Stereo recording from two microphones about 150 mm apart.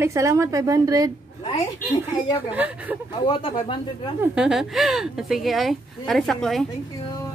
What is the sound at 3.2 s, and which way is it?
Speech, 35° left (ahead or behind).